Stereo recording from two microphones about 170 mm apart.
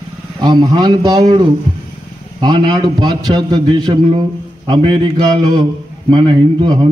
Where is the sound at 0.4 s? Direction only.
25° right (ahead or behind).